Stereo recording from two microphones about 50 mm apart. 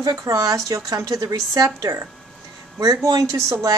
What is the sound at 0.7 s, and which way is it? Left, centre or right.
Speech, right.